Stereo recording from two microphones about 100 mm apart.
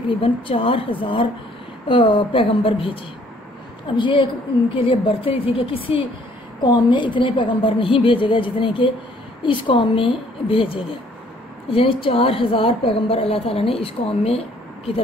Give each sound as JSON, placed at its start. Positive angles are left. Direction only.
{"t": 0.2, "sound": "a woman's voice", "side_deg": 65}
{"t": 6.6, "sound": "a woman's voice", "side_deg": 50}